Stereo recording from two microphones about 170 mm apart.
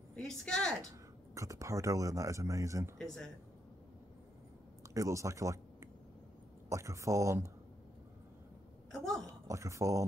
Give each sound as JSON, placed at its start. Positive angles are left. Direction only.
{"t": 0.1, "sound": "speech", "side_deg": 5}
{"t": 0.8, "sound": "speech", "side_deg": -20}
{"t": 4.9, "sound": "speech", "side_deg": -20}
{"t": 8.9, "sound": "speech", "side_deg": 0}
{"t": 9.2, "sound": "speech", "side_deg": -20}